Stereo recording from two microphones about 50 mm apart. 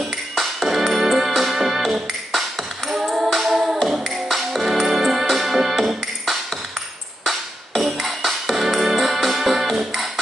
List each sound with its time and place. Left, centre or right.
0.4 s music: centre
2.9 s singing: centre
3.9 s music: centre
8.0 s music: centre